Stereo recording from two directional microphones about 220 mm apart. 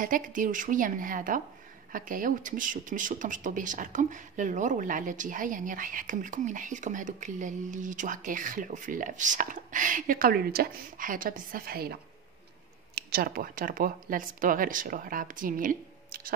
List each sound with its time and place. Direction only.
0.0 s speech: 35° right (ahead or behind)